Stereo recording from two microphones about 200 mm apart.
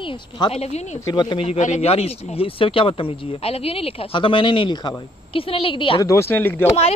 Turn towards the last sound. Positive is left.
turn(degrees=10)  # may be behind; listen again after turning